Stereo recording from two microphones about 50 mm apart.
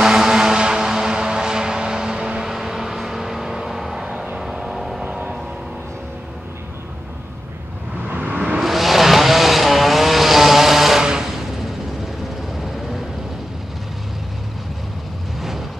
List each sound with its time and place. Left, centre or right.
0.0 s vehicle: centre
5.0 s music: right
8.1 s a sound: right
8.5 s vehicle: centre